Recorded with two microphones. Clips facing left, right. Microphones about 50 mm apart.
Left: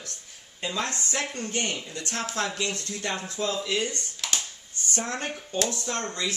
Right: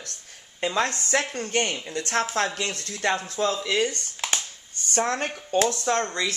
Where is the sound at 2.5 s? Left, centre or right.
Right.